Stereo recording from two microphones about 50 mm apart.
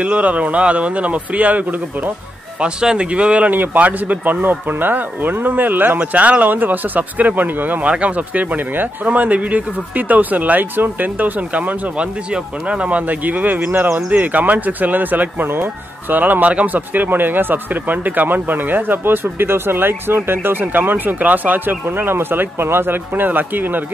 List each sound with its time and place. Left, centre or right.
0.0 s a man's voice: right
2.6 s a man's voice: centre
3.4 s speech: right
5.9 s a man's voice: right